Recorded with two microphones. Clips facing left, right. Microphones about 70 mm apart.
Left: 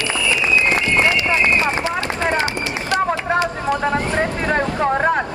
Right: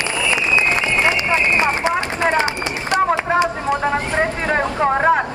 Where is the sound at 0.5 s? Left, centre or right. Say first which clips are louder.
Left 2 dB; right.